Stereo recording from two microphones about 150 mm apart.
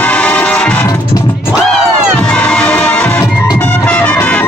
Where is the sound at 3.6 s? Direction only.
10° left (ahead or behind).